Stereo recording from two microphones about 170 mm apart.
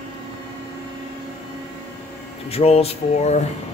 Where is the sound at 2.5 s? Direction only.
35° left (ahead or behind).